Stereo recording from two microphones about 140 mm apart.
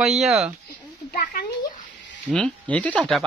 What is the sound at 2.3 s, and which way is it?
Speech, 10° left (ahead or behind).